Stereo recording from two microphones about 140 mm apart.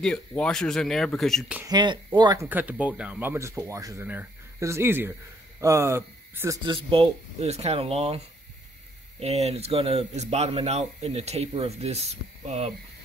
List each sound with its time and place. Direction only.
0.0 s speech: 5° left (ahead or behind)
1.7 s speech: 30° right (ahead or behind)
2.4 s speech: 10° right (ahead or behind)
6.6 s a man's voice: 40° right (ahead or behind)
9.2 s a man's voice: 50° right (ahead or behind)